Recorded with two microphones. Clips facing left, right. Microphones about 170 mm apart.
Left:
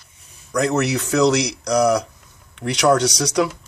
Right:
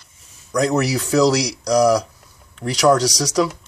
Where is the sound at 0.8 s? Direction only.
35° right (ahead or behind).